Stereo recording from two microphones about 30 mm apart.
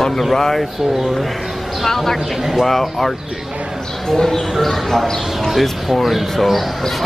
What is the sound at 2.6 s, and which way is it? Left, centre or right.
Speech, centre.